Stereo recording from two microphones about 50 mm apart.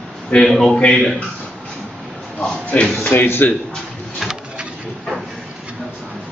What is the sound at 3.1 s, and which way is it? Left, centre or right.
Speech, left.